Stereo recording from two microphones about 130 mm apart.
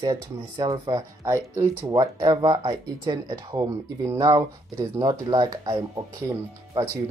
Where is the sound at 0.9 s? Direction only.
20° right (ahead or behind).